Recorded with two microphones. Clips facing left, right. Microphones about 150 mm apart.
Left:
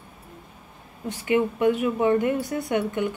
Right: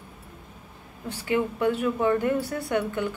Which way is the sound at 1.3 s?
15° left (ahead or behind).